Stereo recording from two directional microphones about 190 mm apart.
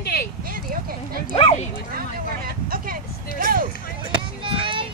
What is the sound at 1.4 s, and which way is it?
Bow-wow, 30° left (ahead or behind).